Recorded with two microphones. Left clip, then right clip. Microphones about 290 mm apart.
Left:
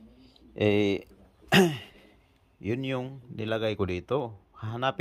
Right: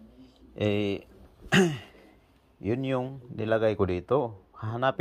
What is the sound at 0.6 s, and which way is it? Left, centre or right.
Speech, centre.